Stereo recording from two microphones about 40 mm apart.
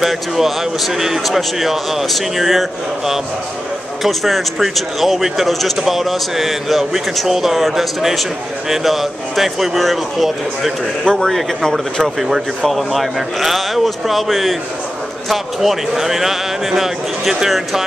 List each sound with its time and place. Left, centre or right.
0.0 s a man's voice: centre
4.0 s a man's voice: centre
11.1 s speech: centre
12.2 s a man's voice: centre